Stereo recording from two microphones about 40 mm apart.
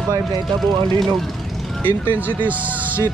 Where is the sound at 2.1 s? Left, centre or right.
Right.